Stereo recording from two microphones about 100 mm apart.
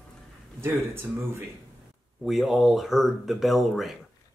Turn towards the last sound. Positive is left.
turn(degrees=0)  # may be behind; listen again after turning